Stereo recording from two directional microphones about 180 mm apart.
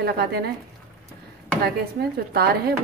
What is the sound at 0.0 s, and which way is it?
Speech, 60° right (ahead or behind).